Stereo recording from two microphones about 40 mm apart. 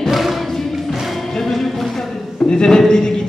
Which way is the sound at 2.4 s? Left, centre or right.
Centre.